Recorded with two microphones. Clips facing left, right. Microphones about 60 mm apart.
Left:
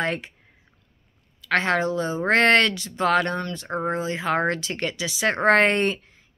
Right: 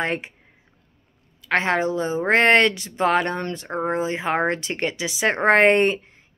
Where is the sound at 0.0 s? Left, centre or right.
Right.